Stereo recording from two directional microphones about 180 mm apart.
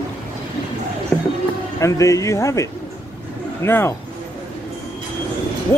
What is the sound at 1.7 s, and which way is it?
Speech, 15° left (ahead or behind).